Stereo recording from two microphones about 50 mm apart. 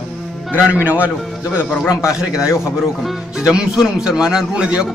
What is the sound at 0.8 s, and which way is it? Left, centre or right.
Speech, right.